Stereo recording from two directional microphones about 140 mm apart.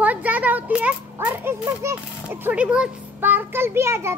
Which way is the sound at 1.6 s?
20° right (ahead or behind).